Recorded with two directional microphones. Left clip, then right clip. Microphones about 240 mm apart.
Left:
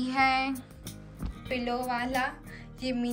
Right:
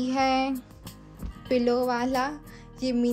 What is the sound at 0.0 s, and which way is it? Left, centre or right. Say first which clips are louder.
Speech: right 1 dB; centre.